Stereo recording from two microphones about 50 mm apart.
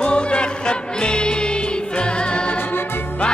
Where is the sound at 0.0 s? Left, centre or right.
Left.